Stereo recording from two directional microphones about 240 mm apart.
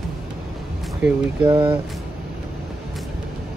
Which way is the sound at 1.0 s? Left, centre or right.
Centre.